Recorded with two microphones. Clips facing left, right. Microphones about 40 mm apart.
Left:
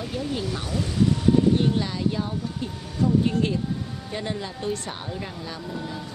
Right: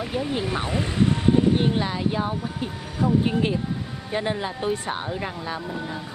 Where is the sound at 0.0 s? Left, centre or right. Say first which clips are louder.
Right 3 dB; right.